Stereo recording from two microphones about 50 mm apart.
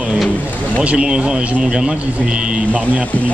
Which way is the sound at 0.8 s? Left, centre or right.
Centre.